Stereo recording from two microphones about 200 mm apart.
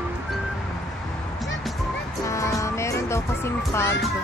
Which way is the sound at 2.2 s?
15° left (ahead or behind).